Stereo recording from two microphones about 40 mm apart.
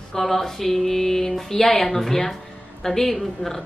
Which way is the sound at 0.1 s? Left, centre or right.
Centre.